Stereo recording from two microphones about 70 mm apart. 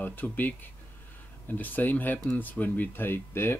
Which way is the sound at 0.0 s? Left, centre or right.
Left.